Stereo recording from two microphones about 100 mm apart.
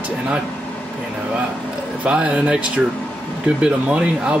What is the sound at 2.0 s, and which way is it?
Speech, 10° right (ahead or behind).